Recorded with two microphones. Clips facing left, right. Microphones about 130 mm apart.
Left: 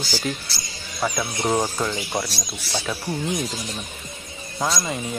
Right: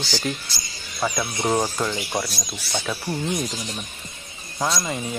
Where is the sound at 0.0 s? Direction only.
5° left (ahead or behind).